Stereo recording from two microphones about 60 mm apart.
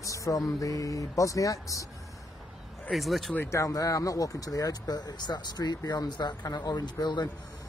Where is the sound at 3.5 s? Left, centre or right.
Left.